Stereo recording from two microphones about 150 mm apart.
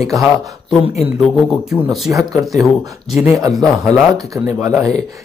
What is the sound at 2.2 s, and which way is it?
Speech, centre (ahead or behind).